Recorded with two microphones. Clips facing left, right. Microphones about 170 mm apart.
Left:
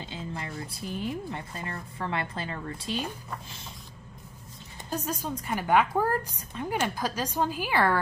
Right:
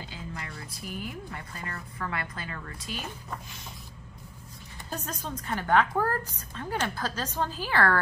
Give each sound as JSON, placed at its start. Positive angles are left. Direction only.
{"t": 0.0, "sound": "speech", "side_deg": 25}
{"t": 4.9, "sound": "a woman's voice", "side_deg": 10}